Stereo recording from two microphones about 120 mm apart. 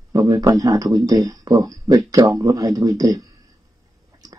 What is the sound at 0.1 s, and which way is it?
A man's voice, 25° right (ahead or behind).